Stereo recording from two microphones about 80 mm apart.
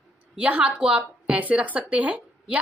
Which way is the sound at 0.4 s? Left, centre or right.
Centre.